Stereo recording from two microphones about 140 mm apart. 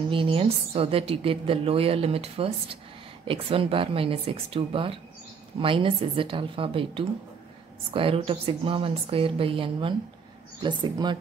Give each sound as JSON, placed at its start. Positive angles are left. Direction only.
{"t": 0.1, "sound": "a woman's voice", "side_deg": -40}